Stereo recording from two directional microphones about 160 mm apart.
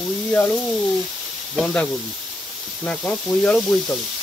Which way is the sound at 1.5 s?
5° left (ahead or behind).